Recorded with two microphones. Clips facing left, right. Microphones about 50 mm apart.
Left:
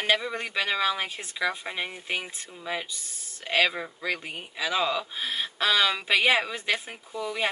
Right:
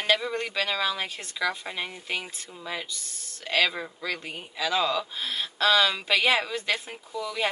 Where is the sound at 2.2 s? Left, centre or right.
Centre; by 7.3 s left.